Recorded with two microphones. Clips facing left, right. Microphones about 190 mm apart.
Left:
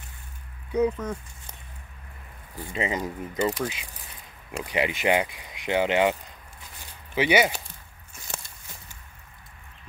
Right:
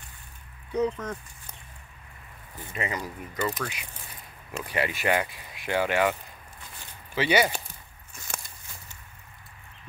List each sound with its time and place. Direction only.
0.7 s speech: 10° left (ahead or behind)
2.7 s speech: 25° left (ahead or behind)
7.2 s speech: 15° left (ahead or behind)